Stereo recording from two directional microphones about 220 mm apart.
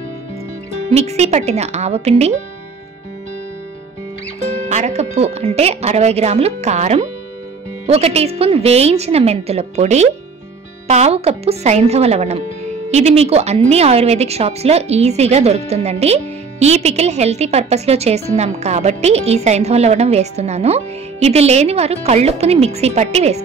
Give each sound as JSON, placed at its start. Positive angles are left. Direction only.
{"t": 0.9, "sound": "a woman's voice", "side_deg": -30}
{"t": 4.6, "sound": "a woman's voice", "side_deg": -30}